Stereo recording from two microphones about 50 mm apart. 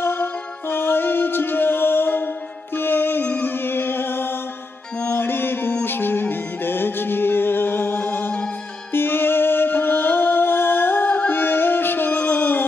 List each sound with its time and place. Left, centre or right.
0.0 s music: left